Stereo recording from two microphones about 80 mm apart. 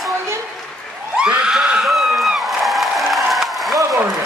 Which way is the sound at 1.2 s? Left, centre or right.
Centre.